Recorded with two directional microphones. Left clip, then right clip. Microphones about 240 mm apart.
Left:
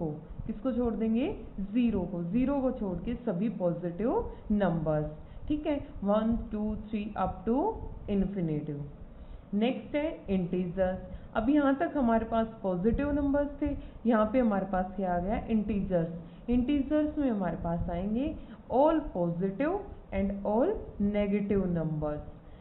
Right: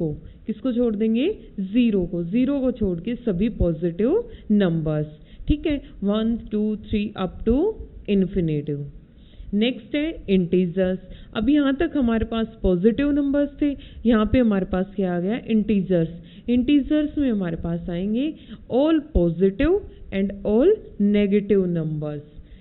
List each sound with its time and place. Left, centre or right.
0.5 s a woman's voice: right